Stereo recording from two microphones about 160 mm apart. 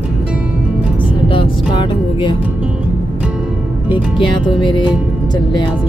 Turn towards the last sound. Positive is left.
turn(degrees=30)  # may be behind; listen again after turning